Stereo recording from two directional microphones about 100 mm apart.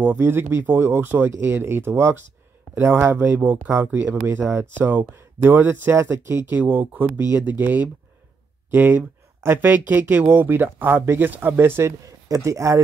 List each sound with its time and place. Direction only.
0.0 s speech: 25° right (ahead or behind)
6.6 s speech: 15° right (ahead or behind); by 12.8 s 30° right (ahead or behind)